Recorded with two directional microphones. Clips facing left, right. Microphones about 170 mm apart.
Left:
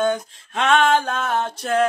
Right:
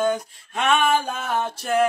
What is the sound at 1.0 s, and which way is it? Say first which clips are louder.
Music: left 4 dB; 90° left.